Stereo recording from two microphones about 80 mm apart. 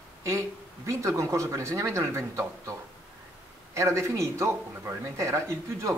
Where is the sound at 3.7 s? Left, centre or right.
Right.